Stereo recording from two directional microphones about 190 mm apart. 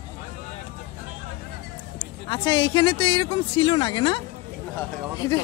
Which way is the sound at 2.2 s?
25° left (ahead or behind).